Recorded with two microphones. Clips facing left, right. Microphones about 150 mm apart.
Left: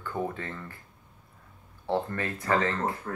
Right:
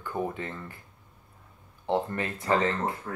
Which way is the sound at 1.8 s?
20° right (ahead or behind).